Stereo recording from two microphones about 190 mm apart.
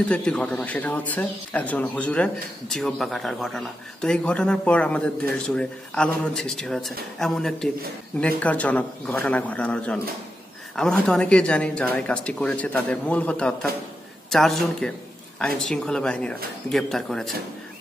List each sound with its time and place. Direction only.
0.0 s a man's voice: 5° left (ahead or behind)